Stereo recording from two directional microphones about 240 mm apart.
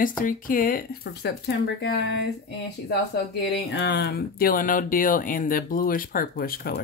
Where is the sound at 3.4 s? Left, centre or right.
Left.